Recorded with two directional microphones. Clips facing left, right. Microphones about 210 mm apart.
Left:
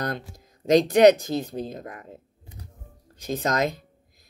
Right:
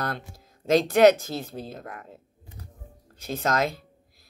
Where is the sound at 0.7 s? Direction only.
15° left (ahead or behind).